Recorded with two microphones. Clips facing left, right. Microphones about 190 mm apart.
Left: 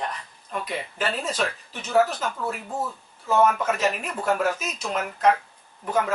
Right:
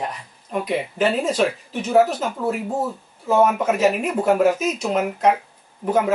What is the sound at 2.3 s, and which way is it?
Speech, 25° right (ahead or behind).